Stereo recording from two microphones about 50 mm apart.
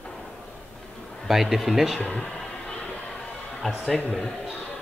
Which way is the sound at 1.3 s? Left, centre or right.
Centre.